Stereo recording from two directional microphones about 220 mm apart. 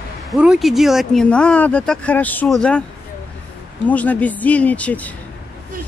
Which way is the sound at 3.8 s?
5° left (ahead or behind).